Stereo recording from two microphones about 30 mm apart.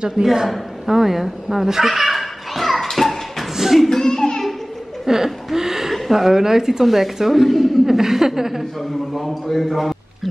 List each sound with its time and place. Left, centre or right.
0.2 s speech: centre
1.7 s a sound: centre
3.5 s a sound: centre
3.9 s music: centre
5.0 s a sound: centre
6.1 s speech: centre
7.4 s a man's voice: centre
7.8 s speech: centre
9.5 s a man's voice: centre